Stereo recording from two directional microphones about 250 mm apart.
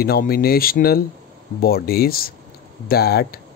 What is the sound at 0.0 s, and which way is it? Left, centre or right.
Speech, left.